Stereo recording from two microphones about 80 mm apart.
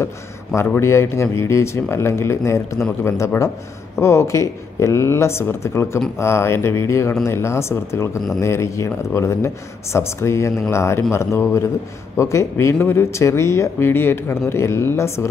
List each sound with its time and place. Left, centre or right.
0.7 s speech: left